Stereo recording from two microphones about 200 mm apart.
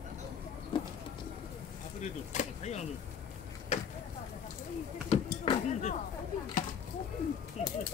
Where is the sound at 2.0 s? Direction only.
35° left (ahead or behind).